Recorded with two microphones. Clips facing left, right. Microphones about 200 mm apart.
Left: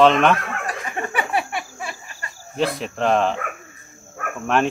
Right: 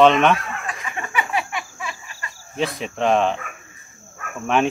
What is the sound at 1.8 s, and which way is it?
Cricket, 40° left (ahead or behind).